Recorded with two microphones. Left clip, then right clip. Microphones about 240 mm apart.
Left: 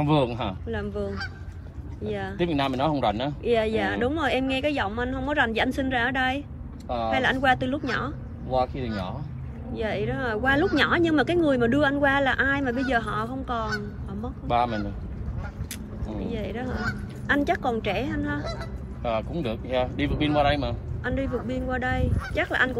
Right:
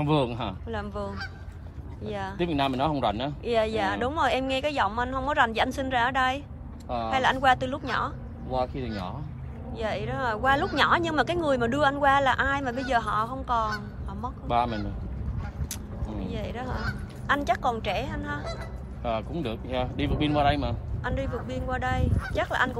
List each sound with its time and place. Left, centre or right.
0.0 s speech: centre
2.0 s speech: centre
16.1 s speech: centre